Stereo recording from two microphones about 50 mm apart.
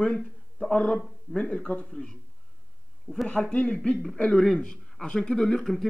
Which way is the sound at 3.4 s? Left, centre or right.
Left.